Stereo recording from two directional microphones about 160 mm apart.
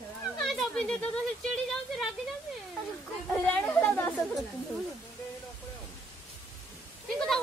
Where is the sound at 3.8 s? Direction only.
10° left (ahead or behind).